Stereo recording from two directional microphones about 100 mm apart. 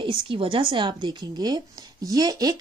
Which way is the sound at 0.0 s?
55° right (ahead or behind).